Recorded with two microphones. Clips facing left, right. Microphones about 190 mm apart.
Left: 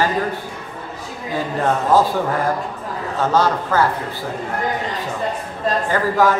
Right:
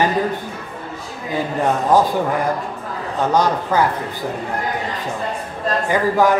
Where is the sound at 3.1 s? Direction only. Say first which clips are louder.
Even; 15° right (ahead or behind).